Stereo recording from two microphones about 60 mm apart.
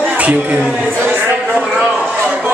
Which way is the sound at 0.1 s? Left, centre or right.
Right.